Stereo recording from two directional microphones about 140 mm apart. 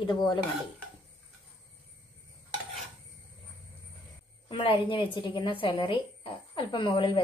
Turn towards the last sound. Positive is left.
turn(degrees=35)  # may be behind; listen again after turning